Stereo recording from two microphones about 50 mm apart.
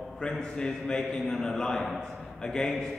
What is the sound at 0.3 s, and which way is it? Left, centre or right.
A man's voice, centre.